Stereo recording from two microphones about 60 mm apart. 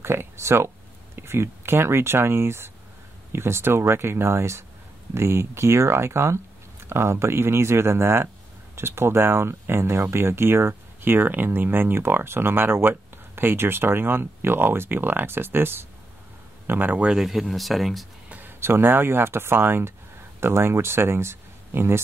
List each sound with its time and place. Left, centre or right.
0.0 s speech: right
17.2 s speech: centre
18.6 s speech: right